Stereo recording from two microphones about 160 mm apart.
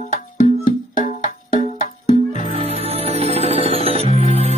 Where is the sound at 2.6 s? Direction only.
40° right (ahead or behind).